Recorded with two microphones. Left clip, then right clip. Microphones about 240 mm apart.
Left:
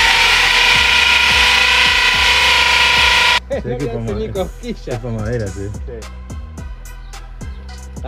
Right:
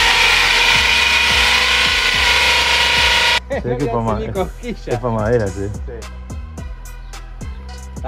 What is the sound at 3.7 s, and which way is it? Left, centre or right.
Music, centre.